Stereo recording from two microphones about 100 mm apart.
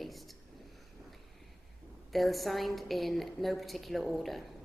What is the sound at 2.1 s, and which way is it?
A woman's voice, centre (ahead or behind).